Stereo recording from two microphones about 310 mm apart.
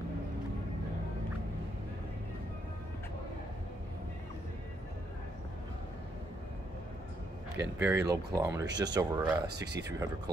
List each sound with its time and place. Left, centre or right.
7.8 s speech: centre